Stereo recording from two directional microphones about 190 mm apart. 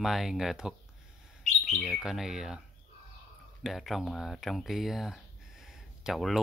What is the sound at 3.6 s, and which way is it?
Speech, centre (ahead or behind).